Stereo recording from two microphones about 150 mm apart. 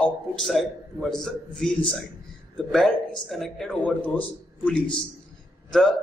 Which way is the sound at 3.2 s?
Centre (ahead or behind).